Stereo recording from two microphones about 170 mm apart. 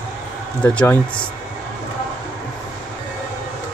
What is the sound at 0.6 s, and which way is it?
Speech, 10° left (ahead or behind).